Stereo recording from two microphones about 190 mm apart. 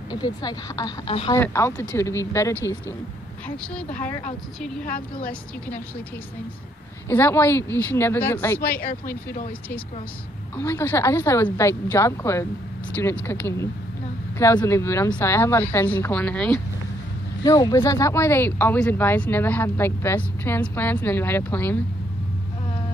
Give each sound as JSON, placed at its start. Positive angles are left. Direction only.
{"t": 0.1, "sound": "speech", "side_deg": 20}
{"t": 1.3, "sound": "speech", "side_deg": 15}
{"t": 4.8, "sound": "a woman's voice", "side_deg": 50}
{"t": 7.1, "sound": "speech", "side_deg": 10}
{"t": 10.5, "sound": "speech", "side_deg": 15}
{"t": 17.4, "sound": "speech", "side_deg": 20}